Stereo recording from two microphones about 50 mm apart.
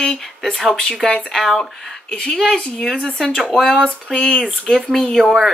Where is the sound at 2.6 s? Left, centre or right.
Left.